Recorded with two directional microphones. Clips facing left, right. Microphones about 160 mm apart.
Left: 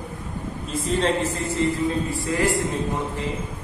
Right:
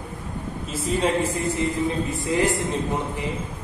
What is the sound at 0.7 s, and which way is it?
A man's voice, 10° right (ahead or behind).